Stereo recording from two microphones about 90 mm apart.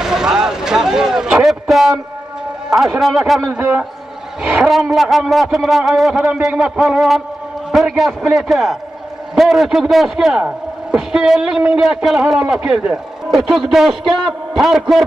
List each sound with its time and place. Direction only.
0.0 s a sound: 5° right (ahead or behind)
2.7 s a man's voice: centre (ahead or behind)
4.4 s a woman's voice: 10° right (ahead or behind)
4.6 s a man's voice: centre (ahead or behind)